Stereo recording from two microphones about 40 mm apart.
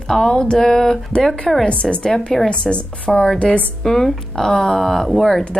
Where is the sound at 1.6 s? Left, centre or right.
Left.